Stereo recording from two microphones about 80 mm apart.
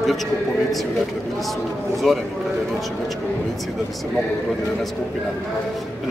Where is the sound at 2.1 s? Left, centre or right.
Centre.